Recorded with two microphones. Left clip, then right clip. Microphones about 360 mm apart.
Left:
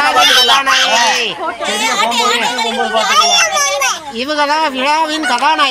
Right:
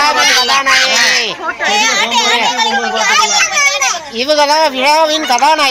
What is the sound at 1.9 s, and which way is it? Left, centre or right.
Speech, right.